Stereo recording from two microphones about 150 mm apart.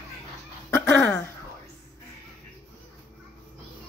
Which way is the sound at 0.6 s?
10° left (ahead or behind).